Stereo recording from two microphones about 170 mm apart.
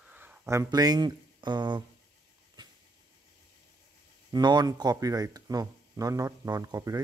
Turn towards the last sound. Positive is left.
turn(degrees=-20)  # may be behind; listen again after turning